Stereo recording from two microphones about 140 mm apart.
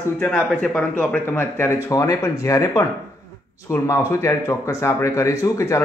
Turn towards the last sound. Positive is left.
turn(degrees=20)  # may be behind; listen again after turning